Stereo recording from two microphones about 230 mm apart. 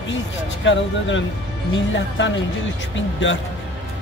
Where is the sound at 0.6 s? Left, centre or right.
Left.